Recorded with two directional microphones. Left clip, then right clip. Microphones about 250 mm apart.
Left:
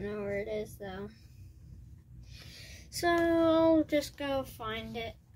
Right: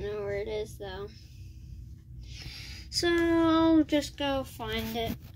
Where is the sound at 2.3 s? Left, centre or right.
Centre.